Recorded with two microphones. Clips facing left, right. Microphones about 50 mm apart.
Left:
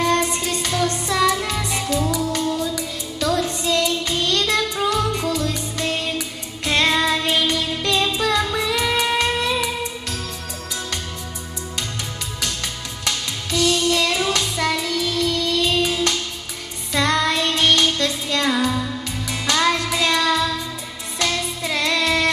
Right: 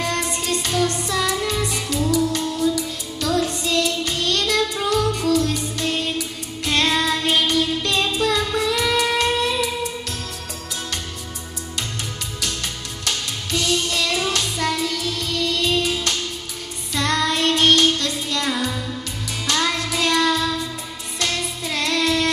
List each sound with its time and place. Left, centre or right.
0.0 s music: left
13.9 s music: left